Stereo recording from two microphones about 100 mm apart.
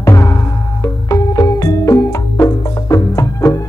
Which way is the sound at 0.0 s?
30° left (ahead or behind).